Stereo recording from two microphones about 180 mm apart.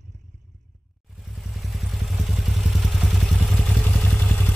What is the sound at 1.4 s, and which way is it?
Vehicle, centre (ahead or behind).